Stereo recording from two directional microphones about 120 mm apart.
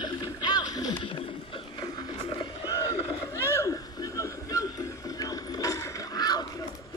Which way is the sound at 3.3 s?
25° left (ahead or behind).